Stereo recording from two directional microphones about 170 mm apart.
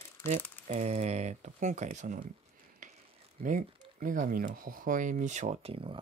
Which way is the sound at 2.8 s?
50° right (ahead or behind).